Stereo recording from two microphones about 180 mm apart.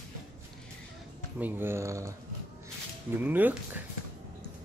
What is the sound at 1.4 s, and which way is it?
Speech, 10° right (ahead or behind).